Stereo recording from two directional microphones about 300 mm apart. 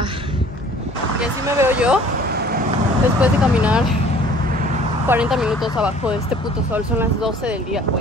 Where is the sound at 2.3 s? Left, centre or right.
Right.